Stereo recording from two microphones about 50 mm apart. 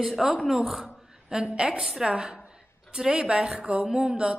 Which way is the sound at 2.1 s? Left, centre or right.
Centre.